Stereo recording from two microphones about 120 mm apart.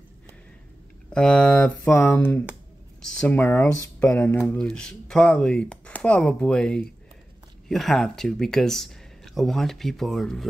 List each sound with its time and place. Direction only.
1.1 s speech: 10° left (ahead or behind)